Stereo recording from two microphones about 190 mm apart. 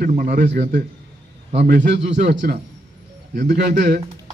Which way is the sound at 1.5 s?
60° right (ahead or behind).